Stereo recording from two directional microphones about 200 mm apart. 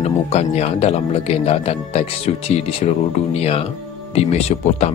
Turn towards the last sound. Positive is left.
turn(degrees=30)  # may be behind; listen again after turning